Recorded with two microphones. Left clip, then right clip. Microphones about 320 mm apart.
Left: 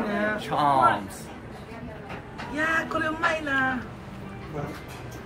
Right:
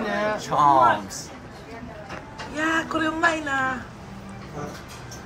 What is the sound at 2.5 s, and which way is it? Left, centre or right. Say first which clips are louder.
Speech: right 1 dB; right.